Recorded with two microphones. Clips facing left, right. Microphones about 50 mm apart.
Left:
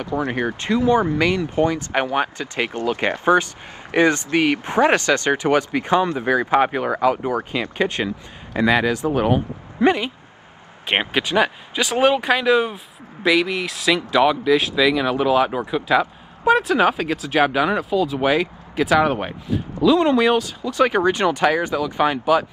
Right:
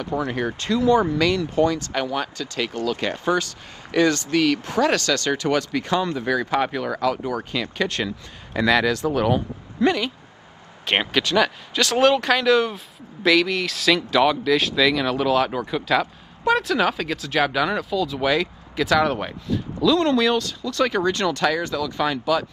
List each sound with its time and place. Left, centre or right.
0.0 s speech: left